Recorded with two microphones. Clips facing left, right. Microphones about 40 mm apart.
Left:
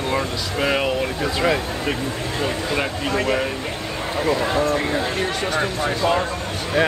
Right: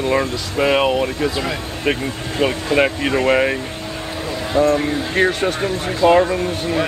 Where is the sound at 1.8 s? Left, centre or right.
Right.